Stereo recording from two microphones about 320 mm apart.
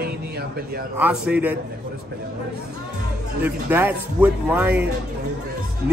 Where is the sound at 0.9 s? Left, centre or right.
Centre.